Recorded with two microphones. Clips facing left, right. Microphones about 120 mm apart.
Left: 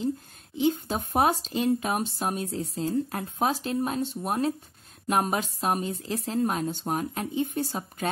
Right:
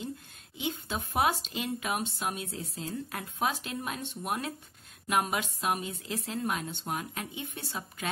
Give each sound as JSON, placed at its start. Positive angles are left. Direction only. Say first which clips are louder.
{"t": 0.6, "sound": "speech", "louder": "left 9 dB", "side_deg": 40}